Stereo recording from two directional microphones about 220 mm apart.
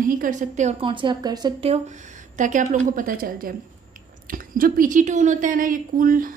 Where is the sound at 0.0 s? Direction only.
35° right (ahead or behind).